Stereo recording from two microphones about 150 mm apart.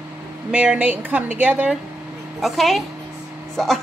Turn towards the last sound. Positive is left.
turn(degrees=0)  # may be behind; listen again after turning